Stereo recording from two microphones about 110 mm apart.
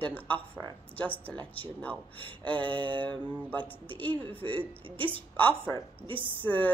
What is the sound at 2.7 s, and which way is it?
Speech, 50° right (ahead or behind).